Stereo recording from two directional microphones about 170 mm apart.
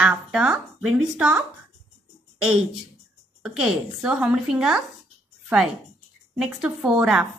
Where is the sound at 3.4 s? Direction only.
5° right (ahead or behind).